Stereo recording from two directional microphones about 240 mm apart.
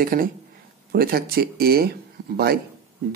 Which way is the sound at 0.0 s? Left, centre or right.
Right.